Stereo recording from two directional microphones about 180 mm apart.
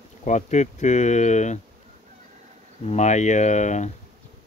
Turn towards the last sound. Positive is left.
turn(degrees=40)  # may be behind; listen again after turning